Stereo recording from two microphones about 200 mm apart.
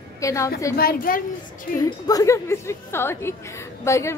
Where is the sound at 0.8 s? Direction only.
45° left (ahead or behind).